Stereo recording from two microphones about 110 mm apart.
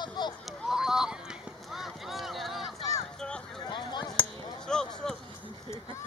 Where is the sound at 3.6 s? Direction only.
45° left (ahead or behind).